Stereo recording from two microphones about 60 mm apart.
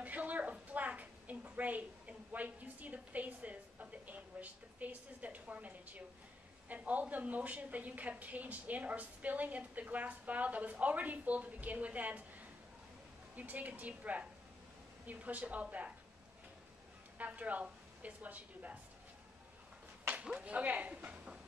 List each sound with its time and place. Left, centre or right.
0.0 s a sound: right
6.7 s a woman's voice: right
17.2 s a woman's voice: right
20.2 s speech: centre